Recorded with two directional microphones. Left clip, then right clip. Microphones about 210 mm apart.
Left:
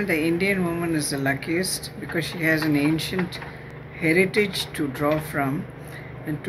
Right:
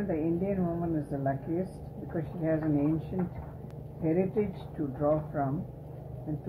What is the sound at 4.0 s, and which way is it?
Speech, 15° left (ahead or behind).